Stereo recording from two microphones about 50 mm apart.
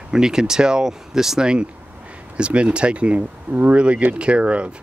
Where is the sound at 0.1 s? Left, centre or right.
Centre.